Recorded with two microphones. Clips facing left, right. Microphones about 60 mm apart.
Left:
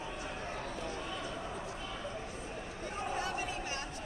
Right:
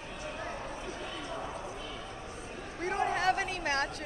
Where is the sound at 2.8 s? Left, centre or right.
Right.